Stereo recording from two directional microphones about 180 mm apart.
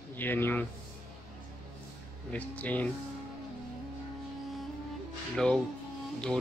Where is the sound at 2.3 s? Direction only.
10° left (ahead or behind).